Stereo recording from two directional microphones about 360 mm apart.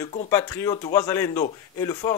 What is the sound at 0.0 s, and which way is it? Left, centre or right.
Speech, centre.